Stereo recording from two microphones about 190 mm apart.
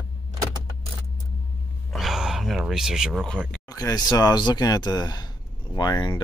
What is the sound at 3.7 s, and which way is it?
Speech, 20° left (ahead or behind).